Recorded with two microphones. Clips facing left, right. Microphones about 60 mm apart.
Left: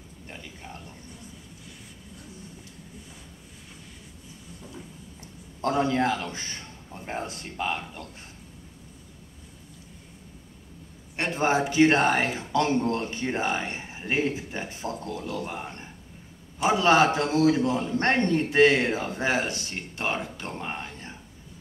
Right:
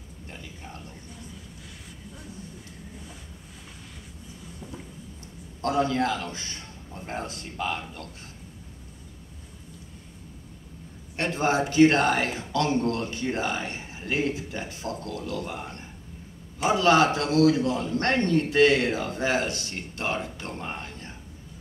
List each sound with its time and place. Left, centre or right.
5.6 s a man's voice: left
11.3 s a man's voice: left